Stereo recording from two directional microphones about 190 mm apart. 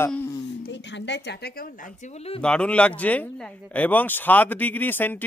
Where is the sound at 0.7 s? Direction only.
70° left (ahead or behind).